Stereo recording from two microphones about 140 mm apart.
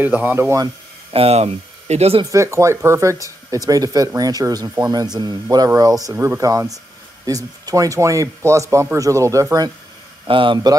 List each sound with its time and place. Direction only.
0.0 s speech: 15° right (ahead or behind)
1.1 s speech: 45° right (ahead or behind)
2.3 s speech: 20° right (ahead or behind)
10.2 s speech: 35° right (ahead or behind)